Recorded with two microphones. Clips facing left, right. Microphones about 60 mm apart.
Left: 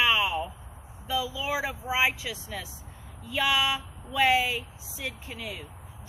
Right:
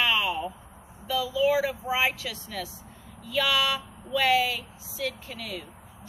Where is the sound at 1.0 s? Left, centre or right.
Centre.